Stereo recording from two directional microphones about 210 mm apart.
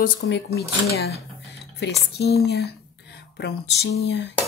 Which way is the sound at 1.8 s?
55° left (ahead or behind).